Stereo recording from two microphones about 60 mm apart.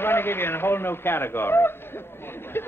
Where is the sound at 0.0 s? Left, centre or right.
Left.